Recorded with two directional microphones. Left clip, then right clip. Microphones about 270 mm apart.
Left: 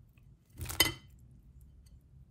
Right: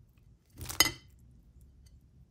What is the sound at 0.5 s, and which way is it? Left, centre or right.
Dishes, centre.